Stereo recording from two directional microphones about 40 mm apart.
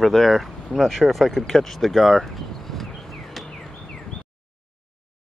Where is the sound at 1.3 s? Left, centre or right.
Centre.